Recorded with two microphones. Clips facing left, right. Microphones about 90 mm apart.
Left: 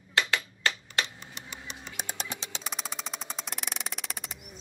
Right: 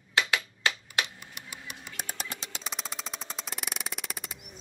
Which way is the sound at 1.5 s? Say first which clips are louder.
Left 1 dB; 10° right (ahead or behind).